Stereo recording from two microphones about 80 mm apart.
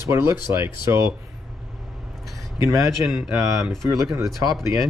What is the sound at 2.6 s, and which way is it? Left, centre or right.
Speech, right.